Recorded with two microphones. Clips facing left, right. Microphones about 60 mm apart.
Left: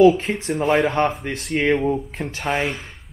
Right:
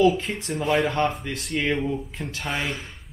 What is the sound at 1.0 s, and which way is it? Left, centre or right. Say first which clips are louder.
Speech: left 4 dB; left.